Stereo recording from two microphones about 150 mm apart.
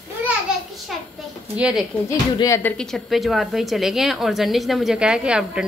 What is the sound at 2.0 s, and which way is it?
Speech, 20° left (ahead or behind).